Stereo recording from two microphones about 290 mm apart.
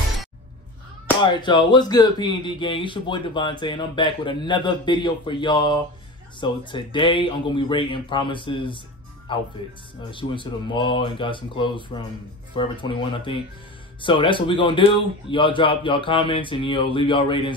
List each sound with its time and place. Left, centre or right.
1.2 s speech: centre